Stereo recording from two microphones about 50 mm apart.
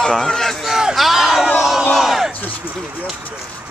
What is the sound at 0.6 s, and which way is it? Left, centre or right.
Speech, centre.